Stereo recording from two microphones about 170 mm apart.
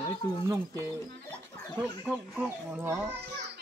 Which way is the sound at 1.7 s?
10° right (ahead or behind).